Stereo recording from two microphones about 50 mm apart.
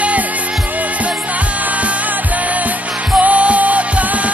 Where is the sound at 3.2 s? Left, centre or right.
Right.